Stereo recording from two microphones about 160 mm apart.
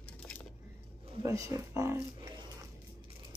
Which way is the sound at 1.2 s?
20° right (ahead or behind).